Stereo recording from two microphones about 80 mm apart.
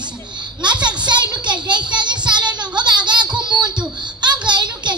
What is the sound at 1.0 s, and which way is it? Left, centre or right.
Child singing, right.